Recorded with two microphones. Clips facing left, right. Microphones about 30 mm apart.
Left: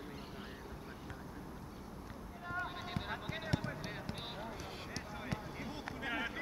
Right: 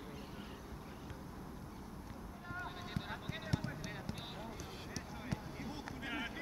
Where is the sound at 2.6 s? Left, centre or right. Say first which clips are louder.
Left 3 dB; centre.